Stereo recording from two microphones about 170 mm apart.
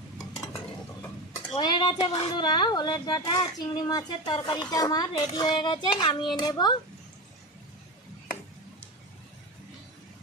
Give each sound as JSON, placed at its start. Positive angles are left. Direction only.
{"t": 1.5, "sound": "speech", "side_deg": 30}